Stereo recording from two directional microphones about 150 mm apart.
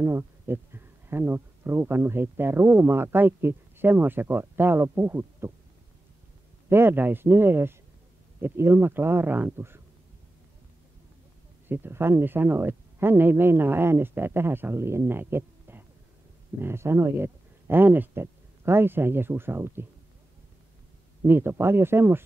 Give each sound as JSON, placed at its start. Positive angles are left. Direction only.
{"t": 0.0, "sound": "speech", "side_deg": -15}
{"t": 6.7, "sound": "speech", "side_deg": -15}
{"t": 11.7, "sound": "speech", "side_deg": -15}
{"t": 21.2, "sound": "speech", "side_deg": -15}